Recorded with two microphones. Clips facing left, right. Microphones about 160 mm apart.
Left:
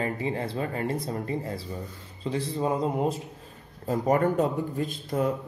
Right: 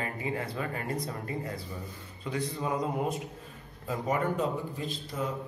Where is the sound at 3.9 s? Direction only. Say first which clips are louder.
Left 6 dB; 45° left (ahead or behind).